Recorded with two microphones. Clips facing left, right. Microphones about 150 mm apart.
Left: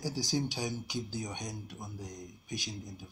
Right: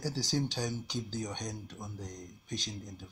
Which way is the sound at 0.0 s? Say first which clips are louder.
Even; 10° left (ahead or behind).